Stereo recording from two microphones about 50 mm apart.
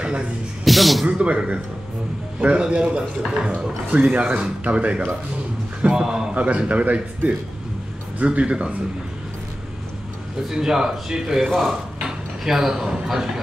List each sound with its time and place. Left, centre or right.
0.7 s speech: centre
1.0 s speech: right
10.5 s speech: centre